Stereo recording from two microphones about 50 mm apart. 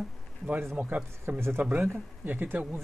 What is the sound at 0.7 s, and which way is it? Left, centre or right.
Speech, right.